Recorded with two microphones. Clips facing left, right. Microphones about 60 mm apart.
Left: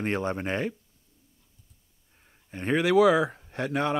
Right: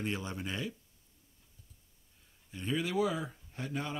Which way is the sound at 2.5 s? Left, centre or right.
Left.